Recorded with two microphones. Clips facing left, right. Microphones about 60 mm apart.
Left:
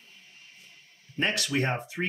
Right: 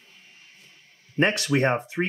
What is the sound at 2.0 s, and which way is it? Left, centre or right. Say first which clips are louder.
Speech: right 5 dB; right.